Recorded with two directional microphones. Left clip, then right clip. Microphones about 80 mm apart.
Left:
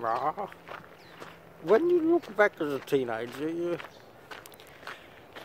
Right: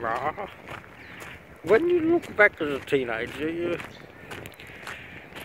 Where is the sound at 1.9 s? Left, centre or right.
Left.